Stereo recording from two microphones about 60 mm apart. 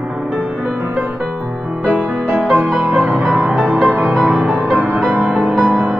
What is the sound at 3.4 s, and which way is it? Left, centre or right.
Music, centre.